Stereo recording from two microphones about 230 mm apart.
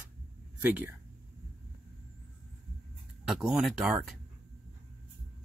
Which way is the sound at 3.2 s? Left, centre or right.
Centre.